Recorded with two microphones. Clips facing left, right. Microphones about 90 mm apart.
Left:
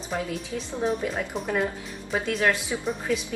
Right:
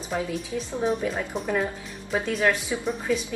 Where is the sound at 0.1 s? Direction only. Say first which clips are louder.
Right 2 dB; 5° right (ahead or behind).